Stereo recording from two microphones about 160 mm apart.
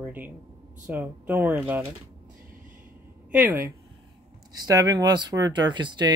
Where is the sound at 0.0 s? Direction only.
10° right (ahead or behind).